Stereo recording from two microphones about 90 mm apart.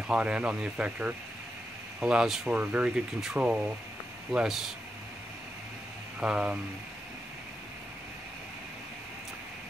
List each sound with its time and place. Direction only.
0.0 s speech: 10° right (ahead or behind)
2.5 s speech: 15° right (ahead or behind)
6.1 s speech: 10° right (ahead or behind)